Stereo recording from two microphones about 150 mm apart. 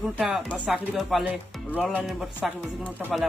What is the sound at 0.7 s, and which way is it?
Speech, centre (ahead or behind).